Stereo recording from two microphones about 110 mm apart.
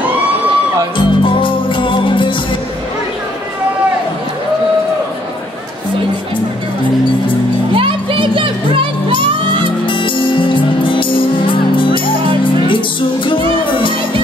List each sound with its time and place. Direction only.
0.9 s music: 50° left (ahead or behind)
7.7 s music: 50° right (ahead or behind)
9.8 s music: 50° left (ahead or behind)